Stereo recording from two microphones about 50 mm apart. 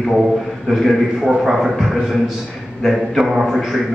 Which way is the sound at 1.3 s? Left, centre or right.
Centre.